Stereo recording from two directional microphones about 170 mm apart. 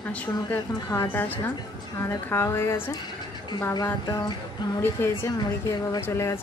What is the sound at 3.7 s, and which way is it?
A woman's voice, 25° left (ahead or behind).